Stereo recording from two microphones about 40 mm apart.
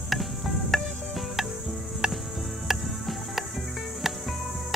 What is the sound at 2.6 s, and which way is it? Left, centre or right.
Music, centre.